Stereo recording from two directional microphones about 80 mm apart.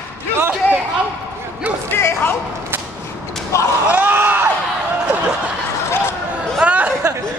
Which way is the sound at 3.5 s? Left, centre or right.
Left.